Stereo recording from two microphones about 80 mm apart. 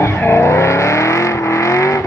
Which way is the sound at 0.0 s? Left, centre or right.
Left.